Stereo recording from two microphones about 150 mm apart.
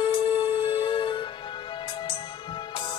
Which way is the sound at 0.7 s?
35° left (ahead or behind).